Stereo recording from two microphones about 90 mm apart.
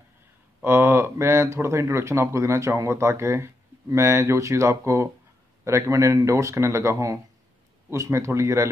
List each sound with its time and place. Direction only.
0.7 s speech: 25° right (ahead or behind)